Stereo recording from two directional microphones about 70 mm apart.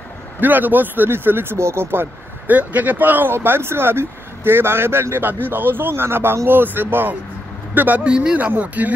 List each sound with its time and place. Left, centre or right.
0.4 s speech: right
8.0 s speech: centre